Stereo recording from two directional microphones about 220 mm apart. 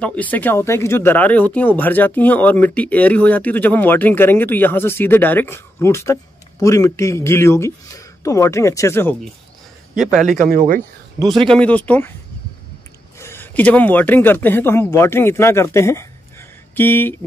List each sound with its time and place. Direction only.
0.0 s speech: 5° left (ahead or behind)
10.4 s speech: 35° right (ahead or behind)
11.4 s speech: 5° left (ahead or behind)
13.2 s speech: 10° left (ahead or behind)